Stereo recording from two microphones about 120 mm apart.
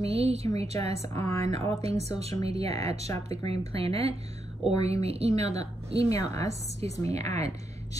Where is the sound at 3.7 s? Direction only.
55° right (ahead or behind).